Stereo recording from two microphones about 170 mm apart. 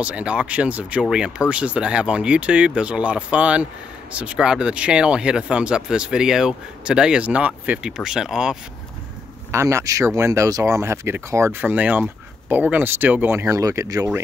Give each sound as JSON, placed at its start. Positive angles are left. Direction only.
{"t": 0.0, "sound": "speech", "side_deg": -5}
{"t": 9.5, "sound": "speech", "side_deg": -15}